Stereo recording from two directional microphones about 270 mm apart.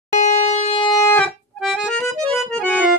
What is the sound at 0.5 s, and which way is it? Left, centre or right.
Siren, left.